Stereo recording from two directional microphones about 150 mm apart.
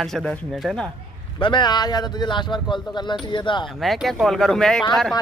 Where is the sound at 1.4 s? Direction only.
30° left (ahead or behind).